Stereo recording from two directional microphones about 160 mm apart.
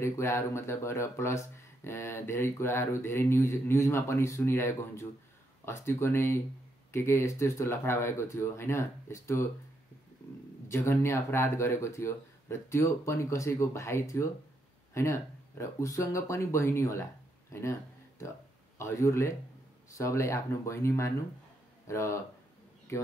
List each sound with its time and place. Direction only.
0.0 s speech: 15° left (ahead or behind)
10.7 s speech: 15° left (ahead or behind)
18.8 s speech: 15° left (ahead or behind)